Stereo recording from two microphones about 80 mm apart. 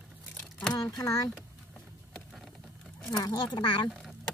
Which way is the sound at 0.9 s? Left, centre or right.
Left.